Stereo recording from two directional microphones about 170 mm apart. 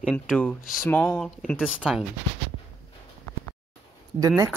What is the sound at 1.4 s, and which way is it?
Speech, 5° right (ahead or behind).